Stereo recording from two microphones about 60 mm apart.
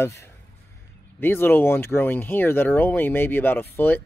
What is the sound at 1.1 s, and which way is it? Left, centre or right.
Speech, left.